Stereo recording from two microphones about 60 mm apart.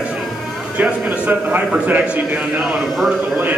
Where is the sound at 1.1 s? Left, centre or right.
Right.